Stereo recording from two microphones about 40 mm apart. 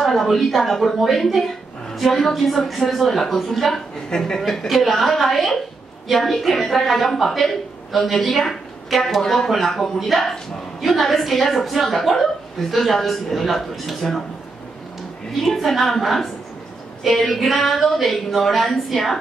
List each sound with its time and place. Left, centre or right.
0.0 s a woman's voice: centre
4.1 s a woman's voice: centre
4.4 s a woman's voice: centre
9.2 s speech: centre
9.5 s a woman's voice: centre
15.4 s a woman's voice: centre